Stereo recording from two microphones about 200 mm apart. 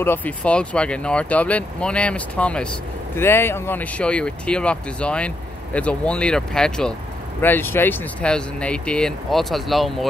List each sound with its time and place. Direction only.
0.0 s speech: 10° left (ahead or behind)